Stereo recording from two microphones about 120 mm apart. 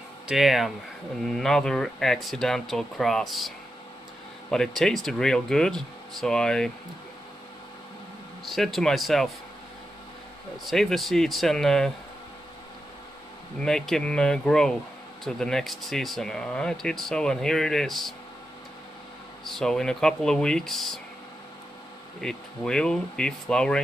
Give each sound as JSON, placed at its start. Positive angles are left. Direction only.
{"t": 0.3, "sound": "speech", "side_deg": 0}
{"t": 8.5, "sound": "speech", "side_deg": 0}
{"t": 10.6, "sound": "speech", "side_deg": 0}
{"t": 13.6, "sound": "speech", "side_deg": 5}
{"t": 19.4, "sound": "speech", "side_deg": 5}
{"t": 22.2, "sound": "speech", "side_deg": 5}